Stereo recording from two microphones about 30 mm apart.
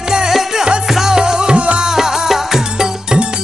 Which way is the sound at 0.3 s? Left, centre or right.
Centre.